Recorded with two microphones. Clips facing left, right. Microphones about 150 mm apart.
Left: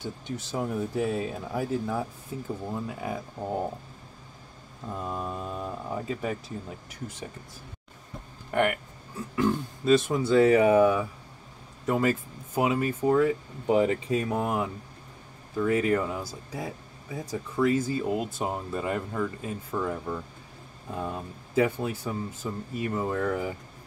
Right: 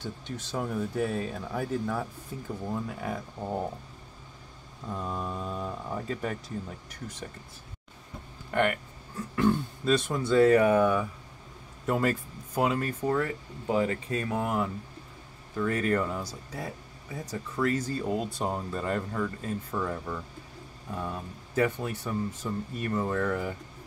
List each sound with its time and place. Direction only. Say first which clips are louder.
0.0 s speech: left 2 dB; 10° left (ahead or behind)
4.8 s speech: left 1 dB; 10° left (ahead or behind)
9.3 s speech: right 1 dB; 5° left (ahead or behind)